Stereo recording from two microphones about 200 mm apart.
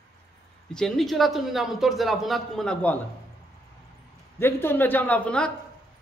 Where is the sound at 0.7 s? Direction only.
5° left (ahead or behind).